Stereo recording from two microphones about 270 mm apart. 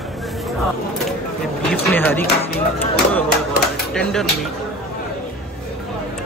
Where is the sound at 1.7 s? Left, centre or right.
Centre.